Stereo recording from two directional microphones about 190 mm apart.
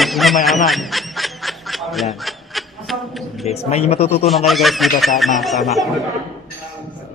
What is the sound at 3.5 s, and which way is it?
Speech, 35° left (ahead or behind).